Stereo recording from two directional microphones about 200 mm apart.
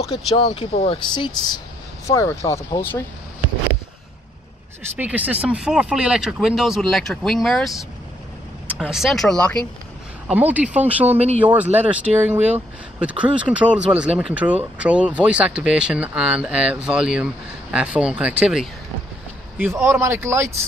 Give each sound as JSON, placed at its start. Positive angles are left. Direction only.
{"t": 0.0, "sound": "speech", "side_deg": 30}
{"t": 4.9, "sound": "speech", "side_deg": -5}
{"t": 10.2, "sound": "speech", "side_deg": -5}